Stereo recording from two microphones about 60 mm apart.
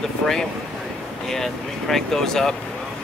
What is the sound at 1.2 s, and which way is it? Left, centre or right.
Speech, centre.